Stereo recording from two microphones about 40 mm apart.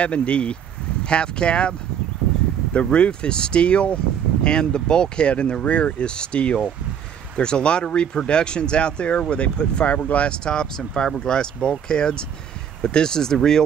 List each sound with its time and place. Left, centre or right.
0.0 s speech: left
10.3 s speech: left